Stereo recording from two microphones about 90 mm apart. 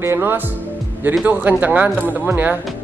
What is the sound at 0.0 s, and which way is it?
Speech, 25° right (ahead or behind).